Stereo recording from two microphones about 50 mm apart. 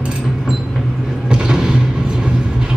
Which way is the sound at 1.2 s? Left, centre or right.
Centre.